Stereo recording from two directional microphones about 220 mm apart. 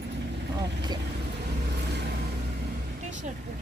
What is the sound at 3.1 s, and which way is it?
Vehicle, 35° right (ahead or behind).